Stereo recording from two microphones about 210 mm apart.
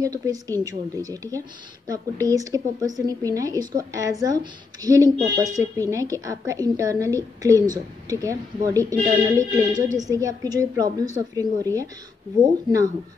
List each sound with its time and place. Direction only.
0.0 s a woman's voice: 15° right (ahead or behind)